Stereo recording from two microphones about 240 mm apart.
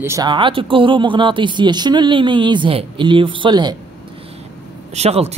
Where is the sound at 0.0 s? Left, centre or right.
Centre.